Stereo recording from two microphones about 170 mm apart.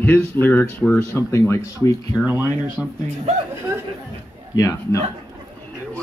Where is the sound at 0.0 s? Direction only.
10° left (ahead or behind).